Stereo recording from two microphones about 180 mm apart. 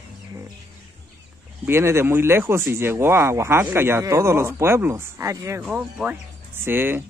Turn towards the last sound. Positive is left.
turn(degrees=-10)  # may be behind; listen again after turning